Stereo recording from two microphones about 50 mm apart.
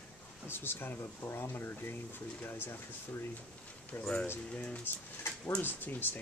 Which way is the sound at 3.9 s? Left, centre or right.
Left.